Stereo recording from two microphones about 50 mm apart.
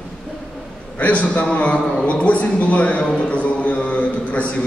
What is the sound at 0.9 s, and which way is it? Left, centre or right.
A man's voice, left.